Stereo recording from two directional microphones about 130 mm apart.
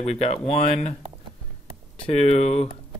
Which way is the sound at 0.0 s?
55° left (ahead or behind).